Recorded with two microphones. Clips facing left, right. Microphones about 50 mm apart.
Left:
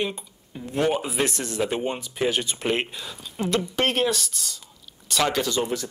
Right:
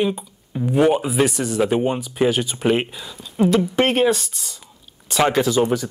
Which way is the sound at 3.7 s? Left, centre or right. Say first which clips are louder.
Right 6 dB; centre.